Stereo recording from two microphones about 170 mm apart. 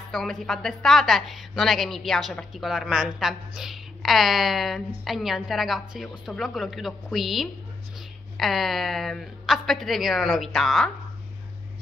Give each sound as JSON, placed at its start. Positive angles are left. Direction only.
{"t": 0.1, "sound": "a woman's voice", "side_deg": 0}